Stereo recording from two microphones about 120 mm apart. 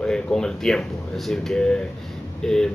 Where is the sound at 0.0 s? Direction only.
5° left (ahead or behind).